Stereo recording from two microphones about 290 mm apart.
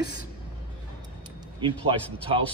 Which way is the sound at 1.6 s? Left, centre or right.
Centre.